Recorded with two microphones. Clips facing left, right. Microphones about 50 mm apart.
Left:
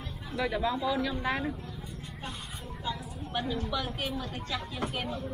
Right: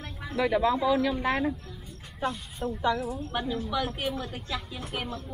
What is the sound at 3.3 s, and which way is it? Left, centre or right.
Speech, centre.